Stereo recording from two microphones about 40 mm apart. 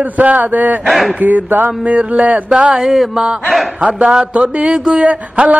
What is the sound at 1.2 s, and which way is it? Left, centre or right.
Mantra, right.